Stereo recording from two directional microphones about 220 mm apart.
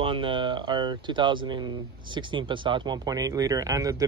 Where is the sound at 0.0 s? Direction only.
25° right (ahead or behind).